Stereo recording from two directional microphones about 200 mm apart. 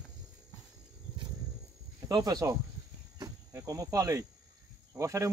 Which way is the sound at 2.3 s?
20° right (ahead or behind).